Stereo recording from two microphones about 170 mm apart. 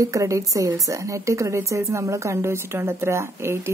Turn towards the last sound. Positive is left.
turn(degrees=-15)  # may be behind; listen again after turning